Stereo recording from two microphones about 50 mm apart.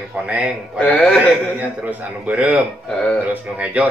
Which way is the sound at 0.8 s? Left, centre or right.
Left.